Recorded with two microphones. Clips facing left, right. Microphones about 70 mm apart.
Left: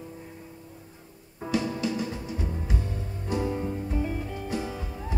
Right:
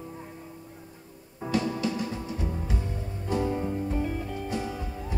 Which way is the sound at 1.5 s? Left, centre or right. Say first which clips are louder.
Even; centre.